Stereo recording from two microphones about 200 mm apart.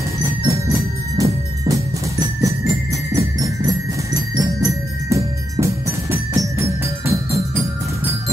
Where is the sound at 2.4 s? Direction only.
15° right (ahead or behind).